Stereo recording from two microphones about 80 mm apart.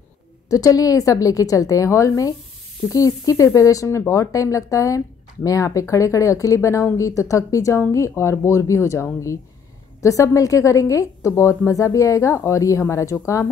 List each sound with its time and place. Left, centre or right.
0.5 s a woman's voice: left
10.0 s a woman's voice: left